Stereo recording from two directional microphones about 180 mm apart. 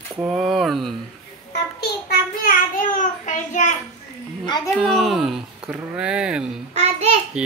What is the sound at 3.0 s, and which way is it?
Speech, 45° left (ahead or behind).